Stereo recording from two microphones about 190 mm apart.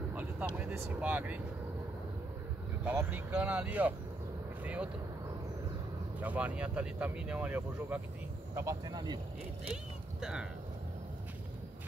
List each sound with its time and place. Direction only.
0.1 s vehicle: 10° right (ahead or behind)
0.6 s speech: 10° right (ahead or behind)
2.8 s speech: 10° right (ahead or behind)
6.1 s speech: 10° right (ahead or behind)